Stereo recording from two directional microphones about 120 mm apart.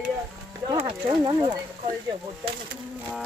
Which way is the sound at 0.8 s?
45° right (ahead or behind).